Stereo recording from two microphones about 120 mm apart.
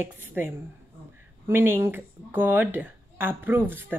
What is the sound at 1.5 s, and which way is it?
Speech, 20° right (ahead or behind).